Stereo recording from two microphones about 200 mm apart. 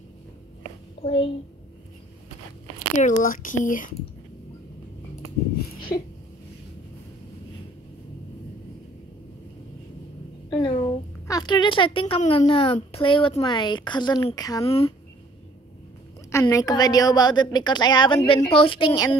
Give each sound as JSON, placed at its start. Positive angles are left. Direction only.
{"t": 1.0, "sound": "a woman's voice", "side_deg": 30}
{"t": 3.0, "sound": "speech", "side_deg": 40}
{"t": 5.9, "sound": "a sound", "side_deg": 50}
{"t": 10.6, "sound": "a sound", "side_deg": 30}
{"t": 11.2, "sound": "a woman's voice", "side_deg": 20}
{"t": 16.3, "sound": "a woman's voice", "side_deg": 15}